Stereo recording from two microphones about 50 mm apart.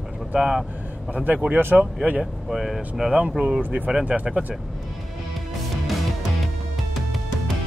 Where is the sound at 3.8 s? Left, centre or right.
Right.